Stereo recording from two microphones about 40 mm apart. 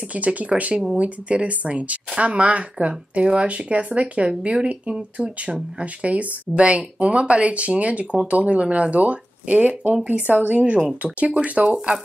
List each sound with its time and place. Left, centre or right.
0.1 s speech: right